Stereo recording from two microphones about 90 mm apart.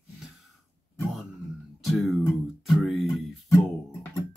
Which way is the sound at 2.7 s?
Centre (ahead or behind).